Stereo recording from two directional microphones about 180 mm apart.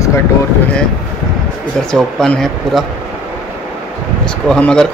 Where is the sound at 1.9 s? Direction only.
5° left (ahead or behind).